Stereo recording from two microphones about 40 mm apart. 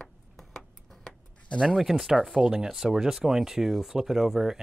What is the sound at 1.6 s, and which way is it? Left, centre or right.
Speech, centre.